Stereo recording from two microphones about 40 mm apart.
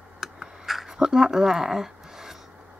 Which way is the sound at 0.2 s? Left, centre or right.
Centre.